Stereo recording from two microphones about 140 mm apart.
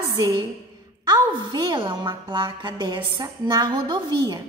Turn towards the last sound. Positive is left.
turn(degrees=-30)  # may be behind; listen again after turning